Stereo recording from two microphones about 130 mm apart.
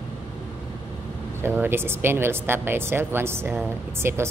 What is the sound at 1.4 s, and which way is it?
Speech, 15° right (ahead or behind).